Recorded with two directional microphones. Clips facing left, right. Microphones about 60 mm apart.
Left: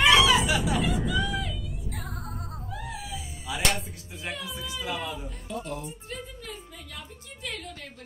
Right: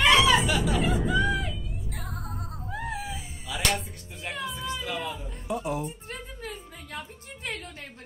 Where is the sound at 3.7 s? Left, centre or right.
Centre.